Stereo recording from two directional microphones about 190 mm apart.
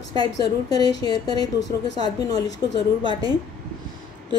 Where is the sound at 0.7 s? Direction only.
20° left (ahead or behind).